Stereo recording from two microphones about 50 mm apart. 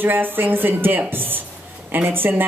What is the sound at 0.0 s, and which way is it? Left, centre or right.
Speech, right.